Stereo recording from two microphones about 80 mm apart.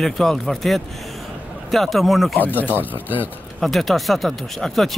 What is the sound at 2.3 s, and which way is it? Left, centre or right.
Speech, left.